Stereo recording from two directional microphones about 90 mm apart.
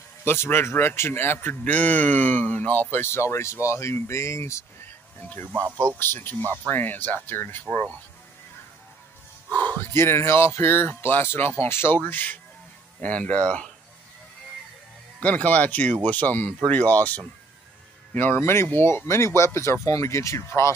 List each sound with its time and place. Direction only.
0.2 s a man's voice: 25° left (ahead or behind)
5.2 s a man's voice: 20° left (ahead or behind)
5.5 s speech: 25° right (ahead or behind)
5.9 s a man's voice: 25° left (ahead or behind)
9.7 s a man's voice: 25° left (ahead or behind)
15.2 s speech: 15° left (ahead or behind); by 20.7 s 35° left (ahead or behind)